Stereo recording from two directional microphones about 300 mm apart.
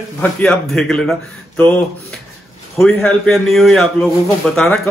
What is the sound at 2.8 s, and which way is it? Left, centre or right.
A man's voice, centre.